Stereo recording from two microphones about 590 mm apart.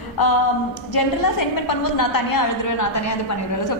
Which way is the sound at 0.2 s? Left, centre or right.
Left.